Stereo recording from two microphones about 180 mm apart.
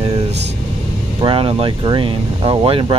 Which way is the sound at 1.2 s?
30° right (ahead or behind).